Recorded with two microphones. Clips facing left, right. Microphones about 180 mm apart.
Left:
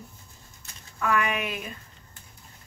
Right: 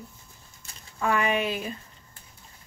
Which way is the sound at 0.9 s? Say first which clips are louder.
Right 1 dB; 30° right (ahead or behind).